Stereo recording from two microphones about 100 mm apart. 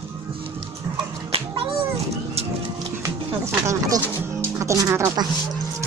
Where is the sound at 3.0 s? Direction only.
30° right (ahead or behind).